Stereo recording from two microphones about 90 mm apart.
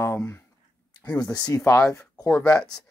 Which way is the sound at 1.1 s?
40° left (ahead or behind).